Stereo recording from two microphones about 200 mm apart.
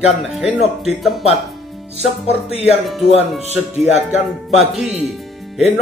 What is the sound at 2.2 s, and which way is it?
Music, 30° left (ahead or behind).